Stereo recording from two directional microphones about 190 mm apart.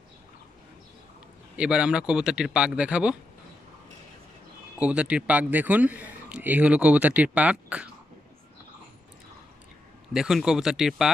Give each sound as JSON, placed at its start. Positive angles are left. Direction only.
{"t": 1.6, "sound": "speech", "side_deg": -5}
{"t": 4.7, "sound": "speech", "side_deg": -5}
{"t": 10.1, "sound": "speech", "side_deg": -5}